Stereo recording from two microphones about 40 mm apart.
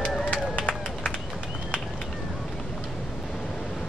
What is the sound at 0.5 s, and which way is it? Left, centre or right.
Run, left.